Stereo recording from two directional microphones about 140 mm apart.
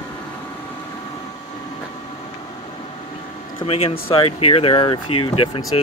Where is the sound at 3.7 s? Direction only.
40° left (ahead or behind).